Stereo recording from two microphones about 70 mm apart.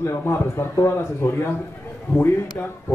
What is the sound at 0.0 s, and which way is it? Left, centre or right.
Speech, left.